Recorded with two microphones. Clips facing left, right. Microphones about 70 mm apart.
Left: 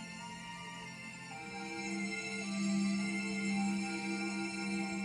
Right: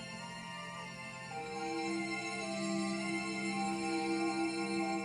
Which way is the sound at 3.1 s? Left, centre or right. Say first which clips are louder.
Even; centre.